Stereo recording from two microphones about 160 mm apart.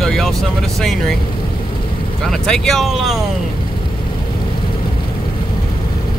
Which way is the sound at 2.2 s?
5° left (ahead or behind).